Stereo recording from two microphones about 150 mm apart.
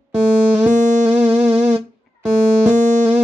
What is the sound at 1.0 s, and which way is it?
Music, 50° right (ahead or behind).